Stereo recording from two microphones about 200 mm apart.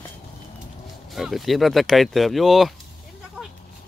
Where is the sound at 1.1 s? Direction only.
Centre (ahead or behind).